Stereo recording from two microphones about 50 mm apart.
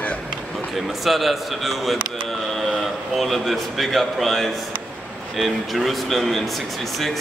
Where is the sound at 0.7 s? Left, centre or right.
Centre.